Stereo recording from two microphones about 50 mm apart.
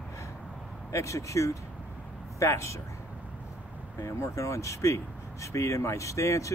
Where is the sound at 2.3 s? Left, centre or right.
Left.